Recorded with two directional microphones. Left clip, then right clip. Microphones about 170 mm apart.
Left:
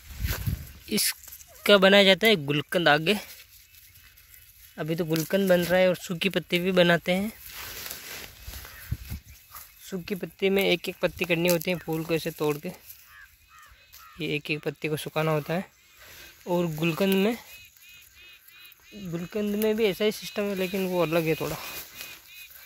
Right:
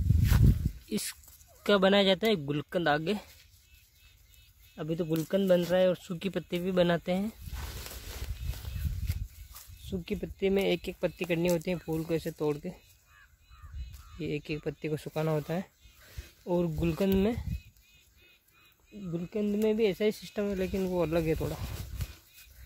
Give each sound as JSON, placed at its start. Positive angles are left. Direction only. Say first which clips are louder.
{"t": 0.8, "sound": "speech", "louder": "left 10 dB", "side_deg": 20}
{"t": 4.7, "sound": "speech", "louder": "left 4 dB", "side_deg": 15}
{"t": 10.0, "sound": "speech", "louder": "left 4 dB", "side_deg": 10}
{"t": 14.2, "sound": "speech", "louder": "left 6 dB", "side_deg": 15}
{"t": 19.1, "sound": "speech", "louder": "left 3 dB", "side_deg": 10}